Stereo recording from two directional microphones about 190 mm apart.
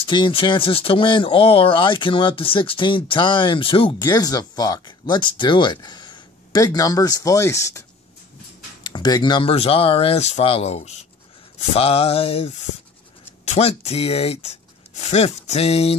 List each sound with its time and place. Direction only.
0.0 s speech: 25° left (ahead or behind)
8.8 s speech: 20° left (ahead or behind)
11.5 s a sound: 30° left (ahead or behind)
13.5 s speech: 35° left (ahead or behind)